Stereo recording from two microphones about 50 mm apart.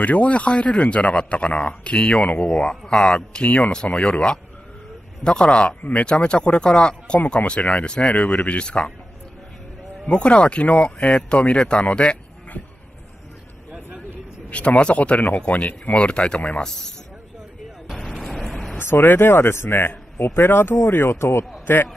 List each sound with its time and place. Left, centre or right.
0.0 s a man's voice: left; by 3.2 s centre
3.2 s speech: left
5.8 s speech: left
6.0 s speech: left
10.0 s speech: left
12.6 s a sound: left
14.5 s speech: left
16.6 s a man's voice: centre
18.4 s vehicle: centre
18.8 s speech: left